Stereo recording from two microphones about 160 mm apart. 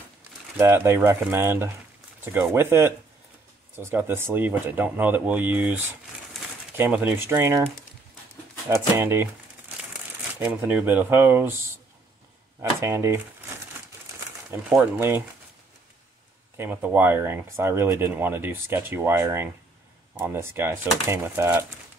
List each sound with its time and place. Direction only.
0.6 s speech: 15° right (ahead or behind)
8.6 s speech: 15° right (ahead or behind)
10.4 s speech: 10° right (ahead or behind)
12.8 s speech: 15° right (ahead or behind)
14.5 s speech: 10° right (ahead or behind)
16.5 s speech: 10° right (ahead or behind)